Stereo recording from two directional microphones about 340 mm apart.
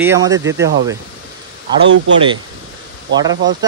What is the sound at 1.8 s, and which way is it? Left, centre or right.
Speech, right.